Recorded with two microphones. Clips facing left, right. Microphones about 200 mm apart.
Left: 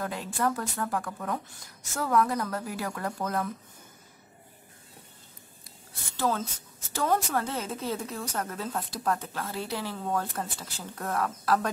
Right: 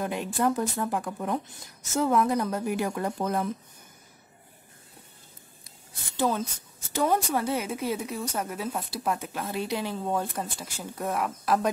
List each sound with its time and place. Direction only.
0.0 s speech: 20° right (ahead or behind)
6.1 s a woman's voice: 15° right (ahead or behind)